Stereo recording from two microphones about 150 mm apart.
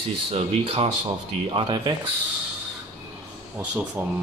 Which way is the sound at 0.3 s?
40° right (ahead or behind).